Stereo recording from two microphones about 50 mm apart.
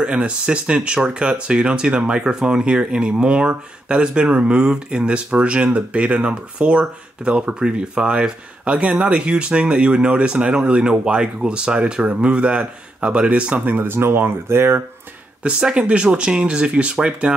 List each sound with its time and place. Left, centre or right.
0.0 s speech: right
13.7 s speech: right
13.9 s speech: right
15.4 s speech: centre